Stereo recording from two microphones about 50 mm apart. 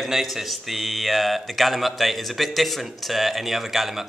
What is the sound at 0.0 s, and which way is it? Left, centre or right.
Speech, centre.